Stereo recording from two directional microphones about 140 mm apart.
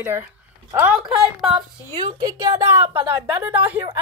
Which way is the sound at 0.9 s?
5° right (ahead or behind).